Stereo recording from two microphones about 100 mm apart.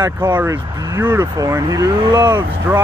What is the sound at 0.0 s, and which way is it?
Speech, 25° right (ahead or behind).